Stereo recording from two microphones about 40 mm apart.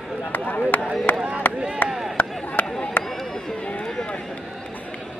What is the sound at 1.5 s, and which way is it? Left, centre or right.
Chop, right.